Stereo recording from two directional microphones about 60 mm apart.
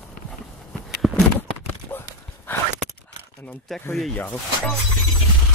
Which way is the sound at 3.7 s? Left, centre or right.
Centre.